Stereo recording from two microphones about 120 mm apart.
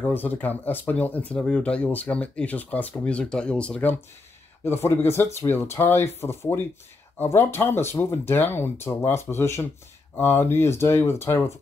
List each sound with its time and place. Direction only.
0.0 s speech: 15° left (ahead or behind)
4.6 s speech: 20° left (ahead or behind)